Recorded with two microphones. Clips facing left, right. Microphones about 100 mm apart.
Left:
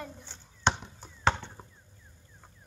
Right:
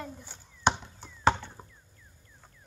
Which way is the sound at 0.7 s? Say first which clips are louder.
Right 2 dB; 15° right (ahead or behind).